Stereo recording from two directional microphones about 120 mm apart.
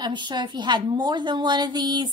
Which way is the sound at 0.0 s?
40° right (ahead or behind).